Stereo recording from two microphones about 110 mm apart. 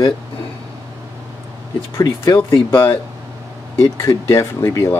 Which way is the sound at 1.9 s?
25° left (ahead or behind).